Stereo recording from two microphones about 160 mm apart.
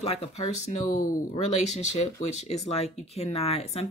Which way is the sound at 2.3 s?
45° left (ahead or behind).